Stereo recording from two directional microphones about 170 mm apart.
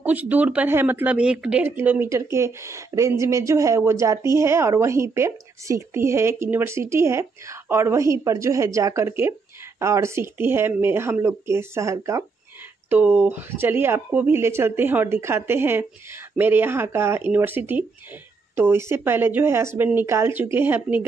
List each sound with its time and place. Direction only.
0.0 s speech: 10° right (ahead or behind)